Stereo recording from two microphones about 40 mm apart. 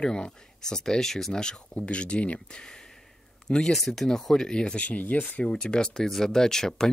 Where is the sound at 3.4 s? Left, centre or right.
Centre.